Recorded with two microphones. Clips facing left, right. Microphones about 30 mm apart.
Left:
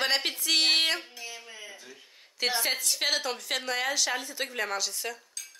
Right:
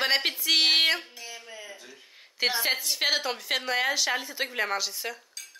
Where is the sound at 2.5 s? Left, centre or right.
Centre.